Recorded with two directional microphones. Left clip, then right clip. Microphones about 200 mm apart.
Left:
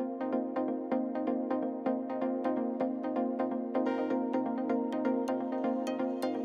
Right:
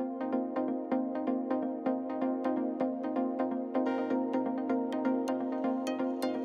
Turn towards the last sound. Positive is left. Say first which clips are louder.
# even
turn(degrees=0)  # may be behind; listen again after turning